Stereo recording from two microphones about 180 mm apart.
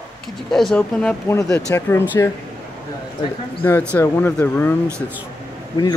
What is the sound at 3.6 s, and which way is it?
Speech, 10° left (ahead or behind).